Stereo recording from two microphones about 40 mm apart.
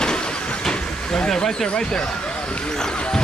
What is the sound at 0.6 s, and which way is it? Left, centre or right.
Speech, centre.